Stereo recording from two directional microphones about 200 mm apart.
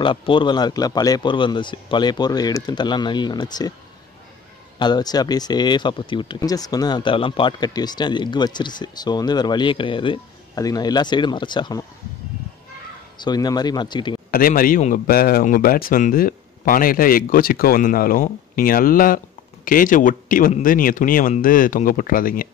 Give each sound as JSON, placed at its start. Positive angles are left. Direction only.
{"t": 0.0, "sound": "speech", "side_deg": 25}
{"t": 4.7, "sound": "speech", "side_deg": 20}
{"t": 13.2, "sound": "speech", "side_deg": 20}
{"t": 14.3, "sound": "a man's voice", "side_deg": 45}